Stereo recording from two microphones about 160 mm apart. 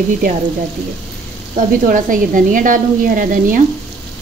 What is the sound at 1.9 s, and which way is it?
A woman's voice, 55° right (ahead or behind).